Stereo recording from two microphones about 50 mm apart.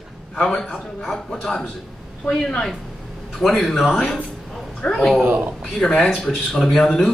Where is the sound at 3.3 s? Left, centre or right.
Centre.